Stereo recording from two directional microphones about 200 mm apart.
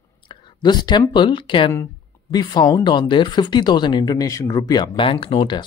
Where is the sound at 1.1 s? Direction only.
25° left (ahead or behind).